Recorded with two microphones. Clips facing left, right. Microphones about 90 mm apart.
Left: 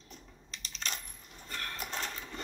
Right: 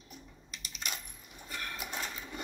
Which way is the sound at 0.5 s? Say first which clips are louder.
Left 1 dB; 10° right (ahead or behind).